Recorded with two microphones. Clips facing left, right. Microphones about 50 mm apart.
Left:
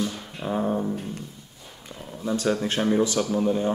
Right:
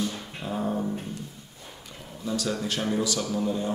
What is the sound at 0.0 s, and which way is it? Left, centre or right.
Music, centre.